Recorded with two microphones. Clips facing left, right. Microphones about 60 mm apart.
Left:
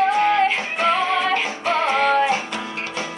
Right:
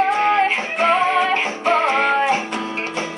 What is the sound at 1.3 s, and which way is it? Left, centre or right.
Music, right.